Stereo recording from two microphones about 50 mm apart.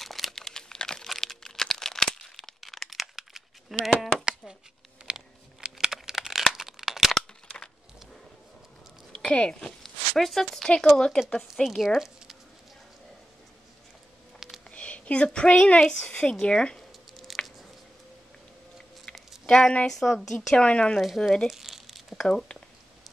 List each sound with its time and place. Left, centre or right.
0.0 s crumpling: centre
1.0 s crumpling: centre
4.2 s a sound: centre
5.0 s crumpling: centre
9.2 s speech: left
9.8 s speech: centre
14.7 s a woman's voice: left
17.4 s squish: left
19.1 s a sound: centre
19.5 s speech: centre
19.9 s speech: centre
20.5 s speech: left
20.9 s speech: centre
21.5 s tearing: centre